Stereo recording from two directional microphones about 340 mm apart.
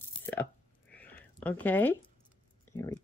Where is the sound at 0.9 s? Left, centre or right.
Centre.